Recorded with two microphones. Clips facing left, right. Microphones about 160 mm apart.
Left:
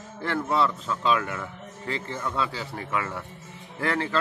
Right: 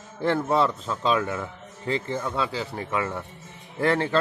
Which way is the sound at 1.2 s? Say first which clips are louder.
Right 4 dB; 20° right (ahead or behind).